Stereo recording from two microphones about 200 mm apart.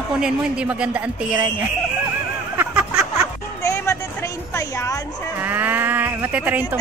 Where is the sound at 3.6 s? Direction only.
15° left (ahead or behind).